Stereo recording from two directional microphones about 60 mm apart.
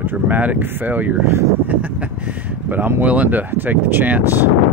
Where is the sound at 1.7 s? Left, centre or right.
Right.